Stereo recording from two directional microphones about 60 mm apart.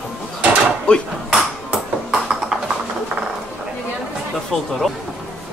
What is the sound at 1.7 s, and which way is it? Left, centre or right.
Ping, centre.